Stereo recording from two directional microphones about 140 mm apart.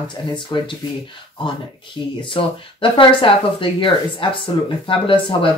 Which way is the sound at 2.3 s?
40° left (ahead or behind).